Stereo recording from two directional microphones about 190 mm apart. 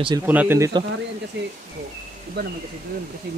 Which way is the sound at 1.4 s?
70° right (ahead or behind).